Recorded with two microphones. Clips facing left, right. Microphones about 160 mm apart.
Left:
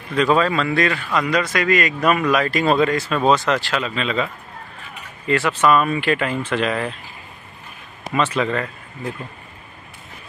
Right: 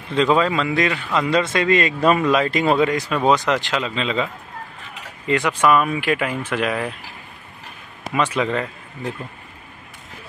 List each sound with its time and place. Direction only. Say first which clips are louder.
0.1 s a man's voice: even; 20° right (ahead or behind)
8.1 s speech: even; 10° right (ahead or behind)